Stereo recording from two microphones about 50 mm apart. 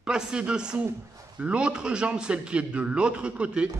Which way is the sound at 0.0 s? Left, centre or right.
Centre.